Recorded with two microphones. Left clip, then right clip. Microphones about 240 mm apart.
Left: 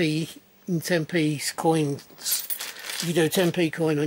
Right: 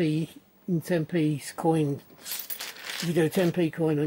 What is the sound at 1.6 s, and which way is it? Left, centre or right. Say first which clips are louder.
Speech: left 2 dB; right.